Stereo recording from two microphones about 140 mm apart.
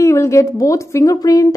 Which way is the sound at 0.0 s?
20° left (ahead or behind).